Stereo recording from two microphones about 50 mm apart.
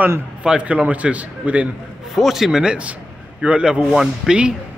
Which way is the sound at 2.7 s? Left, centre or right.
Right.